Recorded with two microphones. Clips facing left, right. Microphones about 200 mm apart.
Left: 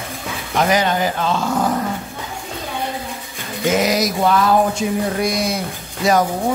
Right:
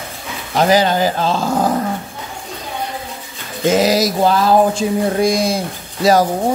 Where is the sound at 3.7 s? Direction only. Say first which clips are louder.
Right 4 dB; 30° right (ahead or behind).